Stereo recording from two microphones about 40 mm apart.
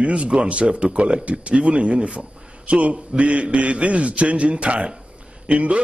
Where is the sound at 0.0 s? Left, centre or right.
Right.